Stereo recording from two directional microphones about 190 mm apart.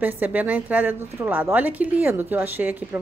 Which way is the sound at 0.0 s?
10° right (ahead or behind).